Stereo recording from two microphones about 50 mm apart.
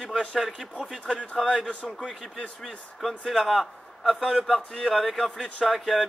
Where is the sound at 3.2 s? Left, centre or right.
Centre.